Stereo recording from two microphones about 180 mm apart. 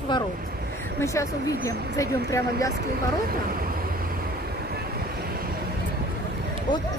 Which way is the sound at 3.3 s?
55° right (ahead or behind).